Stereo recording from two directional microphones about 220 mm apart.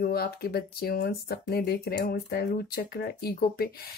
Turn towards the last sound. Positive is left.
turn(degrees=45)  # may be behind; listen again after turning